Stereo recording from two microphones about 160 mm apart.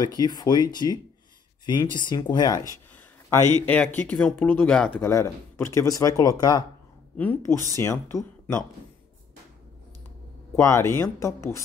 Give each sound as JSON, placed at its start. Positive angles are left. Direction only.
{"t": 0.0, "sound": "speech", "side_deg": 25}
{"t": 3.6, "sound": "speech", "side_deg": 10}
{"t": 10.5, "sound": "speech", "side_deg": 15}